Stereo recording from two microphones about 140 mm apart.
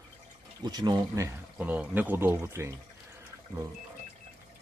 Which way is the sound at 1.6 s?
10° right (ahead or behind).